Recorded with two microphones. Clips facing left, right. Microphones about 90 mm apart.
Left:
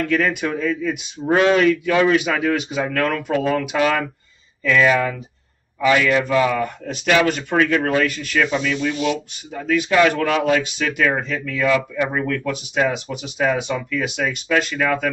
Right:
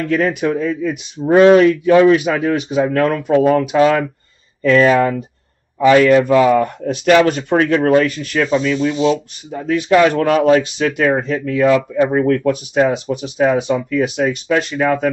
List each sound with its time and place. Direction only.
0.2 s speech: 40° right (ahead or behind)
3.1 s speech: 30° right (ahead or behind)
9.8 s speech: 40° right (ahead or behind)